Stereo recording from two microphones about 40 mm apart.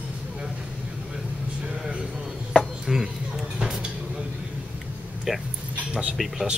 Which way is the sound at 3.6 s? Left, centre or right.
Centre.